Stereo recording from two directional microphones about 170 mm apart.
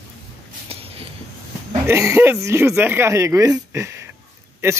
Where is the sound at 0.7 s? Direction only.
35° right (ahead or behind).